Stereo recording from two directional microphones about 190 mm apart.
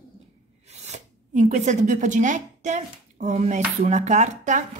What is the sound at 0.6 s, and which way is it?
Speech, 35° right (ahead or behind).